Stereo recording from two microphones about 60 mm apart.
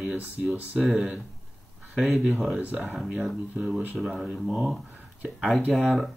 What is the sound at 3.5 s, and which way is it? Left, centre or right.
Speech, centre.